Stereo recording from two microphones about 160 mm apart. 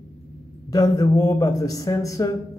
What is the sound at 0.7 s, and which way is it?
Speech, 20° left (ahead or behind).